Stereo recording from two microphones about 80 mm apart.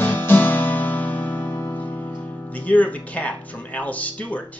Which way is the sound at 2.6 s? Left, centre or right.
Centre.